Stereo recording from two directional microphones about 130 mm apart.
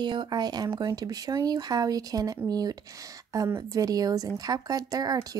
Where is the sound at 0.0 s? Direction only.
35° right (ahead or behind).